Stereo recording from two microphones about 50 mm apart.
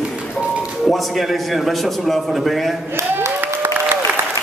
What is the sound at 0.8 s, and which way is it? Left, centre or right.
A man's voice, centre.